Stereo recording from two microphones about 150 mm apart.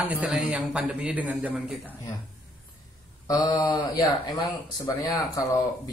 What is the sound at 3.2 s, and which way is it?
Speech, 25° left (ahead or behind).